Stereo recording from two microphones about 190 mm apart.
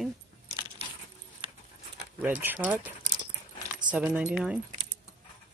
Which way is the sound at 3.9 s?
5° right (ahead or behind).